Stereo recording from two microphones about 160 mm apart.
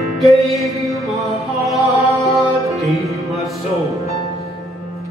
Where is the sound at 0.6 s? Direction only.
Centre (ahead or behind).